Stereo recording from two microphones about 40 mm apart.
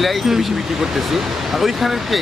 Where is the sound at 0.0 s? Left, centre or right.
Centre.